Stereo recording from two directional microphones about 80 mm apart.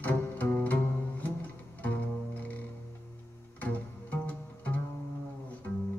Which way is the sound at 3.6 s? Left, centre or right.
Left.